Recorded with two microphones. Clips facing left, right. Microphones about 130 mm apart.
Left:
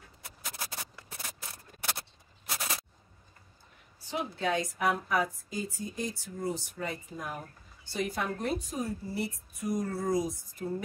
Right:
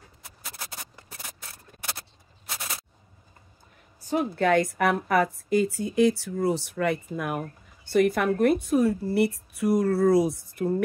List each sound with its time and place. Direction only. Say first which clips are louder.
4.0 s a woman's voice: right 8 dB; 45° right (ahead or behind); by 10.7 s 65° right (ahead or behind)